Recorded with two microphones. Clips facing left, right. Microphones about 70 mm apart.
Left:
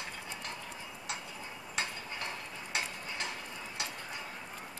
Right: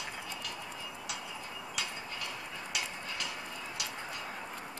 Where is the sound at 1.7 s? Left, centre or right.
Left.